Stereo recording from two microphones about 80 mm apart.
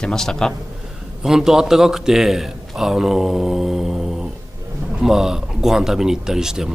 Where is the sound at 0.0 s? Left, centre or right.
Centre.